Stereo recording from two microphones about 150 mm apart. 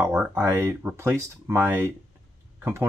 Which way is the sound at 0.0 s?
10° right (ahead or behind).